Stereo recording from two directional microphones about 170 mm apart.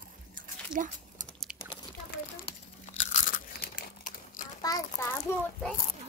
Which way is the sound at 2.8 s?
50° left (ahead or behind).